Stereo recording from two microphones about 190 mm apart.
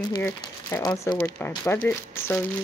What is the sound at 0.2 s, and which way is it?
Speech, 15° left (ahead or behind).